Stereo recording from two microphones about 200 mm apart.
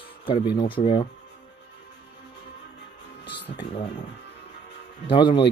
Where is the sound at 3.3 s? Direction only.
60° left (ahead or behind).